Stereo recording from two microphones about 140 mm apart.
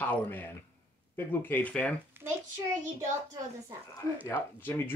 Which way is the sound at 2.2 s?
15° right (ahead or behind).